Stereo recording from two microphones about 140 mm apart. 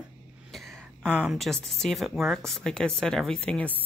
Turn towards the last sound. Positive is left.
turn(degrees=10)  # may be behind; listen again after turning